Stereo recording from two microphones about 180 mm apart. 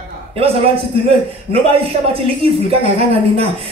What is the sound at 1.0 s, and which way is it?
Speech, 35° right (ahead or behind).